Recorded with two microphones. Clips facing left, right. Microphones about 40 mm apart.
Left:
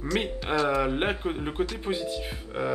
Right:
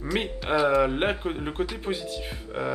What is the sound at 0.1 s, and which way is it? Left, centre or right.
Speech, centre.